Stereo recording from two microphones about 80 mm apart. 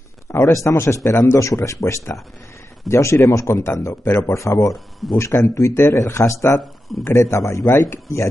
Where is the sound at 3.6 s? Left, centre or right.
Left.